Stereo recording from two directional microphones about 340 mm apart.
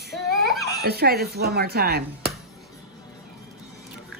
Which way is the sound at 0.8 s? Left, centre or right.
Right.